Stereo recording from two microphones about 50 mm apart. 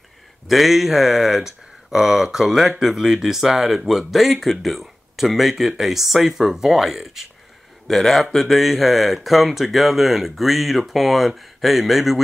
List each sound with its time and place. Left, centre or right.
0.5 s speech: centre
7.9 s speech: centre